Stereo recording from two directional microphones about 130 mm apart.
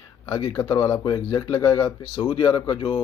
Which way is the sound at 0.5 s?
30° left (ahead or behind).